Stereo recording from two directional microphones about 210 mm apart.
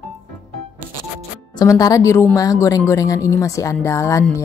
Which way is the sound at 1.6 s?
15° left (ahead or behind).